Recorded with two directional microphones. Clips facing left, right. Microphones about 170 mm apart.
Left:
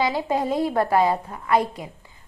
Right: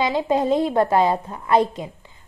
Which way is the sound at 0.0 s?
20° right (ahead or behind).